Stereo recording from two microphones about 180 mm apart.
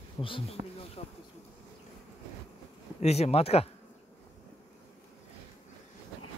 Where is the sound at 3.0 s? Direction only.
35° left (ahead or behind).